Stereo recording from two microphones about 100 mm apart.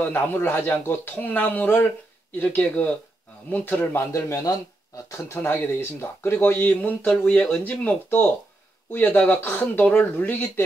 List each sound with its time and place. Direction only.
0.0 s speech: 20° left (ahead or behind)